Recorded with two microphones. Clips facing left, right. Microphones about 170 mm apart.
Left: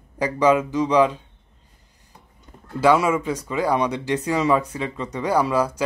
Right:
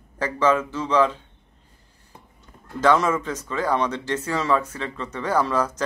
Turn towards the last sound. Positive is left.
turn(degrees=10)  # may be behind; listen again after turning